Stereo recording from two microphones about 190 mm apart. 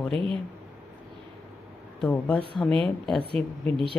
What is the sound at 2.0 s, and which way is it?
Speech, 5° left (ahead or behind).